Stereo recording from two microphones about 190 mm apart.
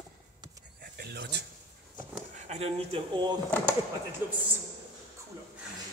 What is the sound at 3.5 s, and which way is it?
Speech, 10° left (ahead or behind).